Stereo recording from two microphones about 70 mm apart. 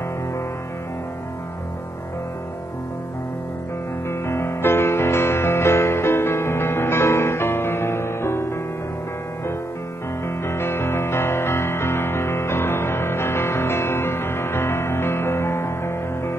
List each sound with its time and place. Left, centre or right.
4.1 s music: left
10.2 s music: left